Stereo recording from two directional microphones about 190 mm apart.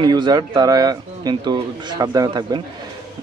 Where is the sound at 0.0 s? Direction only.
20° right (ahead or behind).